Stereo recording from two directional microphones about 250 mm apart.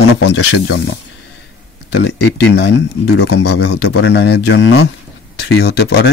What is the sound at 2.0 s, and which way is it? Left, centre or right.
Speech, left.